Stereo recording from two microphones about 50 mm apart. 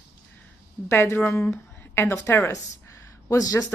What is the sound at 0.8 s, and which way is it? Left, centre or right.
Speech, left.